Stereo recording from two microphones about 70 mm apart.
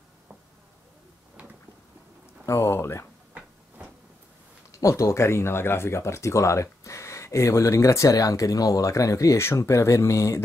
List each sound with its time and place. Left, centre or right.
2.4 s speech: left
4.6 s speech: left